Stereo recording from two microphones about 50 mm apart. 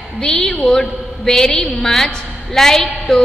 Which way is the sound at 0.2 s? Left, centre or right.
Centre.